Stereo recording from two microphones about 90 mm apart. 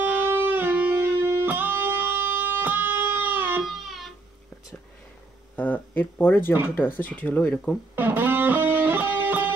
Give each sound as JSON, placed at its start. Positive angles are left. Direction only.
{"t": 0.1, "sound": "music", "side_deg": -25}
{"t": 3.6, "sound": "music", "side_deg": 0}
{"t": 5.6, "sound": "speech", "side_deg": 20}
{"t": 7.9, "sound": "music", "side_deg": -25}